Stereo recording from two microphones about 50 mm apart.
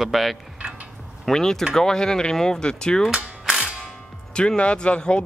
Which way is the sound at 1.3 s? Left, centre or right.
Centre.